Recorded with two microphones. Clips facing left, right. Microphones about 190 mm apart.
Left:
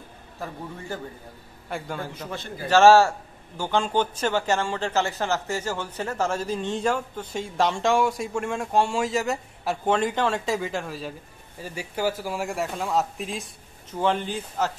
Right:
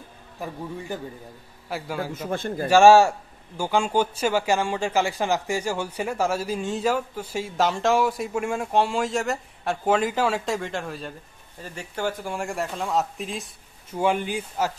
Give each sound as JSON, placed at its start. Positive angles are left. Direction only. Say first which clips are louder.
{"t": 0.4, "sound": "a man's voice", "louder": "right 2 dB", "side_deg": -15}
{"t": 2.3, "sound": "a man's voice", "louder": "right 11 dB", "side_deg": -50}
{"t": 2.7, "sound": "a man's voice", "louder": "right 1 dB", "side_deg": -15}
{"t": 13.9, "sound": "a man's voice", "louder": "right 1 dB", "side_deg": -10}